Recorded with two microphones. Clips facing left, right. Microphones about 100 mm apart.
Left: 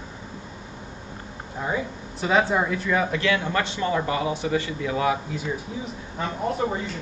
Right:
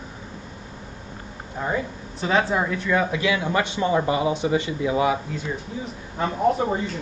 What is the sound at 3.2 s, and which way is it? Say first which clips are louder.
A man's voice: right 1 dB; 15° right (ahead or behind).